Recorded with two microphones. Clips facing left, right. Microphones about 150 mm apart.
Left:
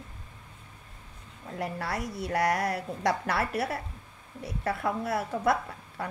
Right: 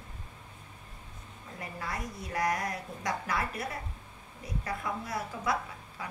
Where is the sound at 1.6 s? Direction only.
75° left (ahead or behind); by 6.0 s 60° left (ahead or behind).